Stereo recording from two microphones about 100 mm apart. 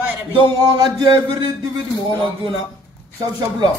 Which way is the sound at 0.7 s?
40° right (ahead or behind).